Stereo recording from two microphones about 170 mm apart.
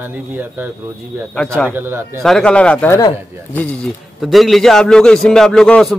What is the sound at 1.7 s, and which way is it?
Speech, 15° right (ahead or behind).